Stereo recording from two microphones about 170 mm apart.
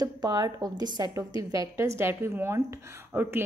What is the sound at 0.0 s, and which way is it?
A woman's voice, 25° right (ahead or behind).